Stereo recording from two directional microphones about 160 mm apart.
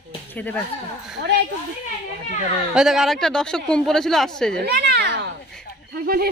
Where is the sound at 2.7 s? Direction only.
5° right (ahead or behind).